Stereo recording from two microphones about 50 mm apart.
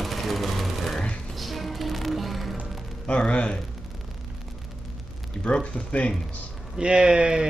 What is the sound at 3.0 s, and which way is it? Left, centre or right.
Speech, left.